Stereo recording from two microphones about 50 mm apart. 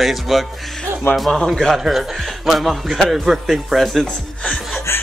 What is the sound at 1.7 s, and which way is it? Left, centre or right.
A man's voice, centre.